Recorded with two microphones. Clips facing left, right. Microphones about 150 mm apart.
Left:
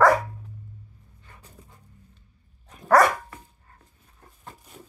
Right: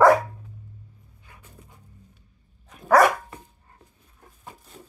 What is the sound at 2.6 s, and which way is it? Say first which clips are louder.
Dog: even; centre (ahead or behind).